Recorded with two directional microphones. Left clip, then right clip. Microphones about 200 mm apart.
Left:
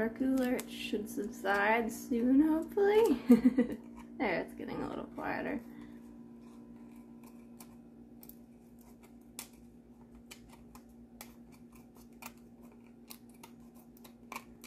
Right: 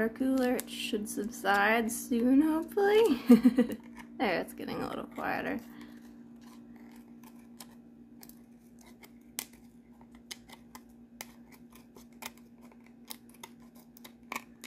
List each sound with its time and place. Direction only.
0.0 s speech: 30° right (ahead or behind)